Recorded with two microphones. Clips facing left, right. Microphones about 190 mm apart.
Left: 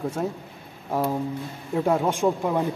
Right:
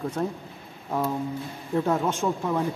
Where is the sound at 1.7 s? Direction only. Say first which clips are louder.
Left 2 dB; 10° left (ahead or behind).